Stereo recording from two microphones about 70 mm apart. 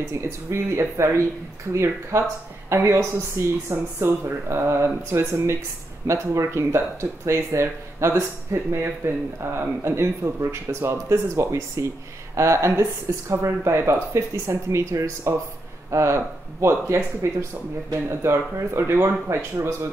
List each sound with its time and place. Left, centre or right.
0.0 s speech: right
13.5 s speech: right
18.9 s speech: right